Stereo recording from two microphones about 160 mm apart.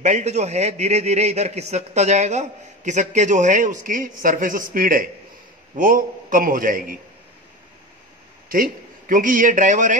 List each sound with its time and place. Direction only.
0.0 s a man's voice: 45° right (ahead or behind)
8.5 s a man's voice: 60° right (ahead or behind)